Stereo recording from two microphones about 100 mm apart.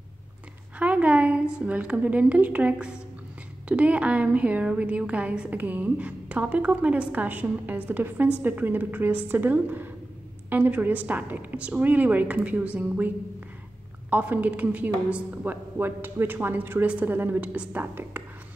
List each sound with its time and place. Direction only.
0.7 s a woman's voice: 15° right (ahead or behind)
14.1 s a woman's voice: 15° right (ahead or behind)